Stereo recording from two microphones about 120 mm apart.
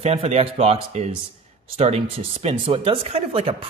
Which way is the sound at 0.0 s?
60° right (ahead or behind).